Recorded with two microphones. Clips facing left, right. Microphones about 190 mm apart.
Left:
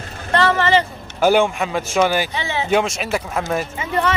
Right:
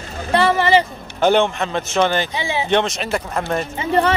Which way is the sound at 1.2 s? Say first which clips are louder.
Even; 10° left (ahead or behind).